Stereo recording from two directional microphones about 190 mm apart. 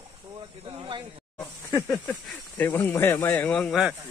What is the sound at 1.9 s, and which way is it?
Speech, 5° left (ahead or behind).